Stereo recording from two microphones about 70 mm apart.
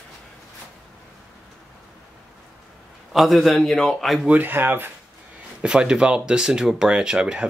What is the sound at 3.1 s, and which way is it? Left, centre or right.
Speech, centre.